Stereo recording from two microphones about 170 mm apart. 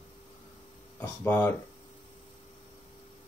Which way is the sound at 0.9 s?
15° left (ahead or behind).